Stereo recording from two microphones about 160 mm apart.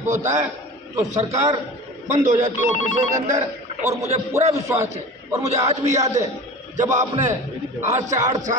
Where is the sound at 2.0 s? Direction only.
50° right (ahead or behind).